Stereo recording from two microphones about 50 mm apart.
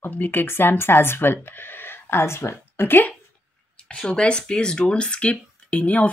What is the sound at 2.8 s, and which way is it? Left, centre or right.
Speech, left.